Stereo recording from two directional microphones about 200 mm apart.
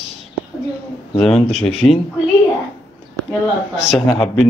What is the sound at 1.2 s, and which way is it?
Speech, 30° left (ahead or behind).